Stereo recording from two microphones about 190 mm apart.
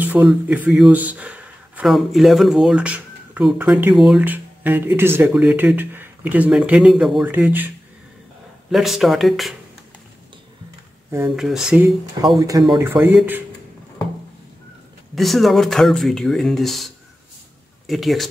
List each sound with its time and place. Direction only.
0.0 s speech: 10° right (ahead or behind)
11.1 s speech: 15° right (ahead or behind)
11.3 s speech: centre (ahead or behind)
12.2 s speech: 20° right (ahead or behind)
15.1 s speech: centre (ahead or behind)